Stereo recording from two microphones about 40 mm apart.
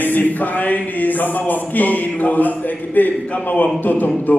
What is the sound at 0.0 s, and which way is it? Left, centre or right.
Music, left.